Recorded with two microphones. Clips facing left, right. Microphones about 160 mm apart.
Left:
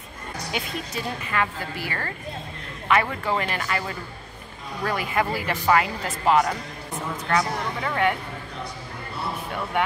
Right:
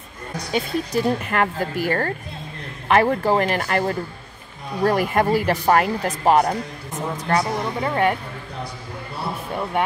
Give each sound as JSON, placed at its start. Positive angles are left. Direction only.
{"t": 0.5, "sound": "a woman's voice", "side_deg": -35}
{"t": 1.2, "sound": "a woman's voice", "side_deg": -55}